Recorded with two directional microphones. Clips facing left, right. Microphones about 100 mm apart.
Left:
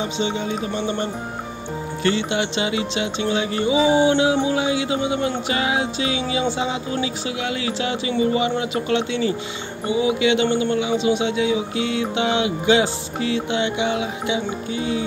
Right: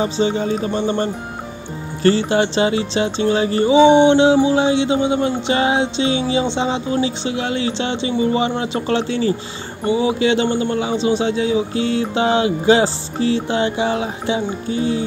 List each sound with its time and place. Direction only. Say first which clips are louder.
0.0 s a man's voice: right 5 dB; 40° right (ahead or behind)